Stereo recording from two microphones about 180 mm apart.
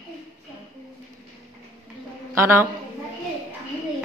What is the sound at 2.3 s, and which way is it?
Speech, 15° right (ahead or behind).